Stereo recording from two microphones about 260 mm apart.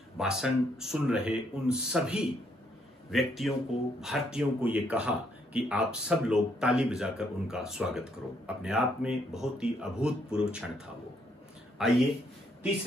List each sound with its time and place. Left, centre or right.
0.2 s speech: centre
11.8 s speech: centre